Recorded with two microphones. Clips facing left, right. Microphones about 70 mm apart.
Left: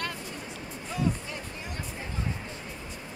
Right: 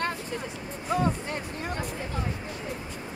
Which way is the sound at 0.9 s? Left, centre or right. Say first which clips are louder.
Right 4 dB; right.